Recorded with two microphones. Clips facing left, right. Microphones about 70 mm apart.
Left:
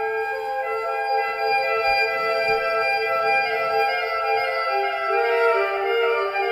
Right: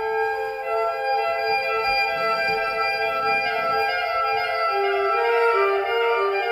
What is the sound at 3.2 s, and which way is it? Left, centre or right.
Music, left.